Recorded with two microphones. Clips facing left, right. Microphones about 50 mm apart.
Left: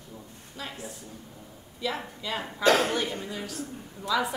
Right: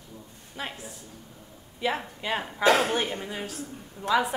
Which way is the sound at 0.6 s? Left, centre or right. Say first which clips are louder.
Right 3 dB; right.